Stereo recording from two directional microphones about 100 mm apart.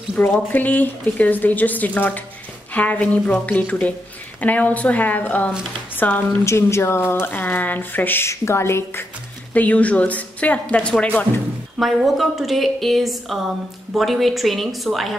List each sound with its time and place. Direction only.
0.1 s a woman's voice: 20° left (ahead or behind)
9.5 s a woman's voice: 15° left (ahead or behind)
11.8 s speech: centre (ahead or behind)